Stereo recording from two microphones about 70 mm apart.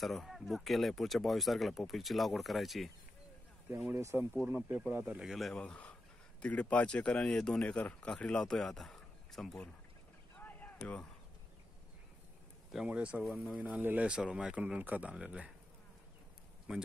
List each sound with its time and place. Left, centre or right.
0.0 s speech: centre
3.9 s speech: right
4.5 s speech: right
5.2 s speech: centre
5.5 s speech: centre
10.3 s a sound: left
12.8 s speech: centre
13.2 s speech: centre
13.5 s speech: centre
13.7 s speech: right
14.0 s speech: centre